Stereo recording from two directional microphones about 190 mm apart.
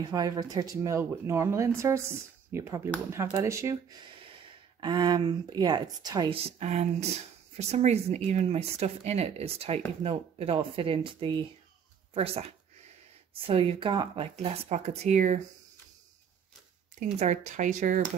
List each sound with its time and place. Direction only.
0.1 s speech: 20° right (ahead or behind)
4.7 s speech: 25° right (ahead or behind)
17.2 s speech: 40° right (ahead or behind)